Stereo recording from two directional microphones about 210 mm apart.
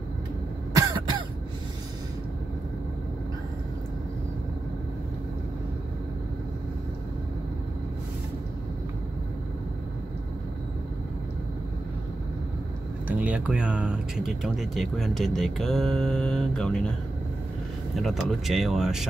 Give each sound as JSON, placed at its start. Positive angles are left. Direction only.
{"t": 0.7, "sound": "cough", "side_deg": -20}
{"t": 13.0, "sound": "speech", "side_deg": -5}
{"t": 17.9, "sound": "speech", "side_deg": 0}